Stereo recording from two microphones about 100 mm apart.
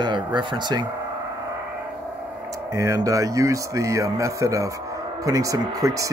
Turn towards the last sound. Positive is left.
turn(degrees=-35)  # may be behind; listen again after turning